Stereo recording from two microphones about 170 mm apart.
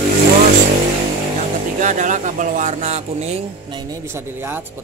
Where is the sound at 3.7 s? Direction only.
25° right (ahead or behind).